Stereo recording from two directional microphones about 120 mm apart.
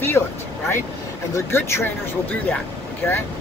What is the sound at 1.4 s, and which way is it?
Speech, 20° left (ahead or behind).